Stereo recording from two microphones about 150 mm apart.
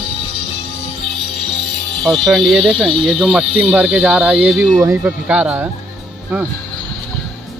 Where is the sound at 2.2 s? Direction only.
Centre (ahead or behind).